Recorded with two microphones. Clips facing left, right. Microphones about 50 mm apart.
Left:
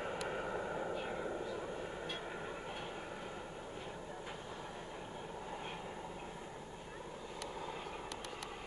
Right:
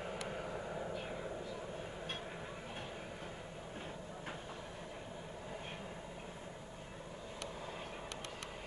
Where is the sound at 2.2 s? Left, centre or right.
Centre.